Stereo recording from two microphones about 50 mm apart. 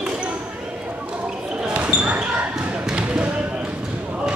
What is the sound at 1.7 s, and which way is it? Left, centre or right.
Basketball bounce, right.